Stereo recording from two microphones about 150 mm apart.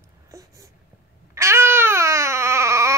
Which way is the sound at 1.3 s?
20° right (ahead or behind).